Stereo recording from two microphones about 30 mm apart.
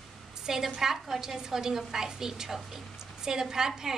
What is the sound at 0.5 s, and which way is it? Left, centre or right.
A woman's voice, centre.